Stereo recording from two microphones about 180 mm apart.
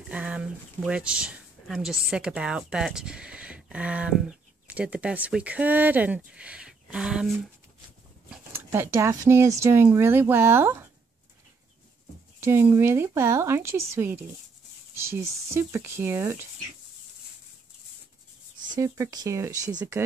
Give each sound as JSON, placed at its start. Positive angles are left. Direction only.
{"t": 0.1, "sound": "speech", "side_deg": -5}
{"t": 8.3, "sound": "speech", "side_deg": -15}
{"t": 12.4, "sound": "a woman's voice", "side_deg": -15}
{"t": 18.8, "sound": "a woman's voice", "side_deg": -20}